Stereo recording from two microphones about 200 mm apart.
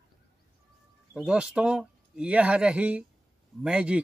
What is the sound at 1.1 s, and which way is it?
Speech, 5° right (ahead or behind).